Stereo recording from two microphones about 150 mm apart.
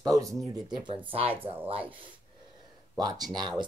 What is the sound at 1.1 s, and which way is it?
Speech, 40° right (ahead or behind).